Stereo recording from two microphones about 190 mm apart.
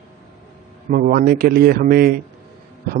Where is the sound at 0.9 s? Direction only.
50° right (ahead or behind).